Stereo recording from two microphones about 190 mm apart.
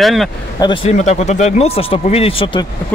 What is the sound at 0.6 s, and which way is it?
Speech, 30° left (ahead or behind).